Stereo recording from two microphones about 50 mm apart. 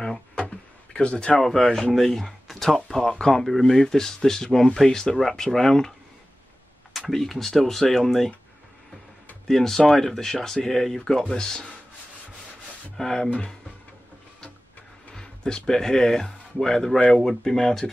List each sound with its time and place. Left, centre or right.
0.9 s a man's voice: centre
1.4 s speech: centre
9.5 s speech: centre
12.9 s speech: centre
13.3 s a man's voice: centre
15.1 s speech: centre